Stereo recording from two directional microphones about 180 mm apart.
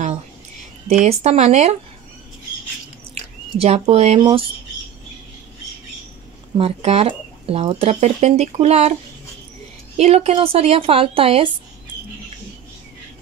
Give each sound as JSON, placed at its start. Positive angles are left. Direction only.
{"t": 0.8, "sound": "speech", "side_deg": -35}
{"t": 3.5, "sound": "speech", "side_deg": -35}
{"t": 6.6, "sound": "speech", "side_deg": -35}
{"t": 9.9, "sound": "speech", "side_deg": -35}